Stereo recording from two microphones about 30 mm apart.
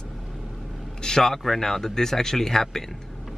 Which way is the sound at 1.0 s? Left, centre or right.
Centre.